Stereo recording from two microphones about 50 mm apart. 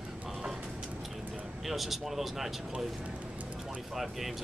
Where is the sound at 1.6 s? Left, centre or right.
Centre.